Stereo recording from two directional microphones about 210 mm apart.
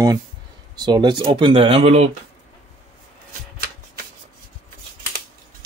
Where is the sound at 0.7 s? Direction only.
20° right (ahead or behind).